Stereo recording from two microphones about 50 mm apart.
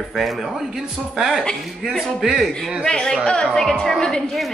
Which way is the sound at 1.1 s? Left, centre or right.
Centre.